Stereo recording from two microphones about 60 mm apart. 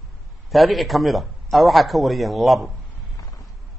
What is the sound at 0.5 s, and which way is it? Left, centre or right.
A man's voice, centre.